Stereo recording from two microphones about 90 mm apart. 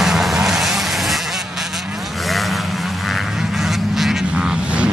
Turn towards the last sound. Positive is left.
turn(degrees=-10)  # may be behind; listen again after turning